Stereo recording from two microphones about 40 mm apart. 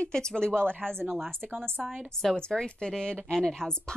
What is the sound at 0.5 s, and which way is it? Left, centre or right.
Speech, right.